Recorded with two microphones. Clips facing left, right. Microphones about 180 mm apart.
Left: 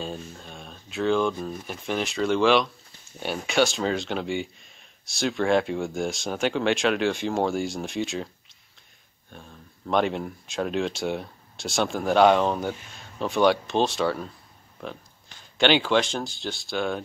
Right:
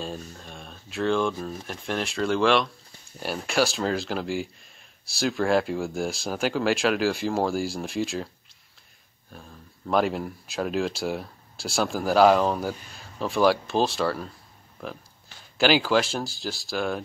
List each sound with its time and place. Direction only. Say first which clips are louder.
0.0 s speech: left 1 dB; centre (ahead or behind)
9.3 s speech: even; centre (ahead or behind)
15.5 s speech: even; 5° right (ahead or behind)